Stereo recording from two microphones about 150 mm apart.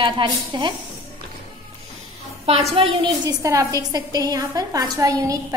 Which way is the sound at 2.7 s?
35° right (ahead or behind).